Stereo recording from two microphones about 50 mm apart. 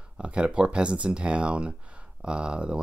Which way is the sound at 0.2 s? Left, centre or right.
Right.